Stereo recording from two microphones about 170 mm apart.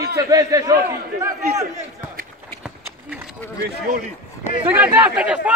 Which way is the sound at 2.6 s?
5° right (ahead or behind).